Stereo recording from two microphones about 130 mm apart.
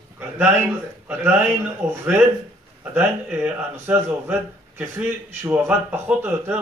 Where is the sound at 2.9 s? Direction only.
15° right (ahead or behind).